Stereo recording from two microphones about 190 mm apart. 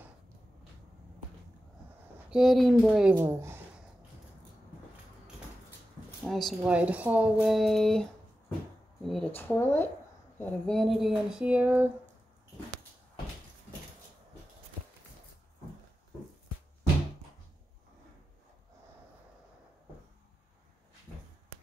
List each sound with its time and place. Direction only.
2.2 s speech: centre (ahead or behind)
6.2 s speech: centre (ahead or behind)